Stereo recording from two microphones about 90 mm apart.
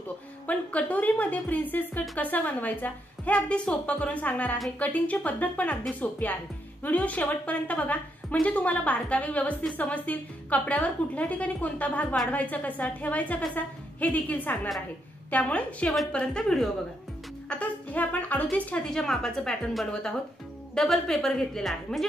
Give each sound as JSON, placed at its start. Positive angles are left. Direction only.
{"t": 0.5, "sound": "a woman's voice", "side_deg": 15}